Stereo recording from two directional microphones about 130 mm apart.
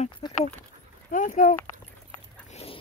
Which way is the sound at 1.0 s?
90° left.